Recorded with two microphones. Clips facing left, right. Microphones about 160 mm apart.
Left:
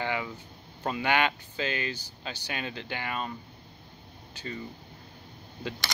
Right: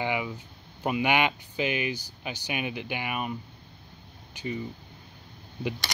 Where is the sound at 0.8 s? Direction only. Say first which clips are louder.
Right 2 dB; 15° right (ahead or behind).